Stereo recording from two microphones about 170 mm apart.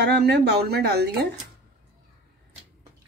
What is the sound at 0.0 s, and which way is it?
Speech, 70° right (ahead or behind).